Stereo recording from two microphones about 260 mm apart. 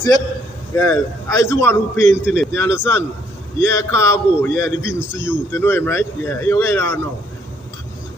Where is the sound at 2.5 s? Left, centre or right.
Centre.